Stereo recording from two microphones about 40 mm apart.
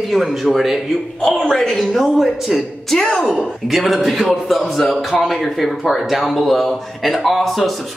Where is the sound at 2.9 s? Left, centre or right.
Centre.